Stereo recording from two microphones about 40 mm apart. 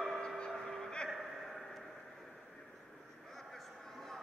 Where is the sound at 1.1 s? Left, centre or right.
Centre.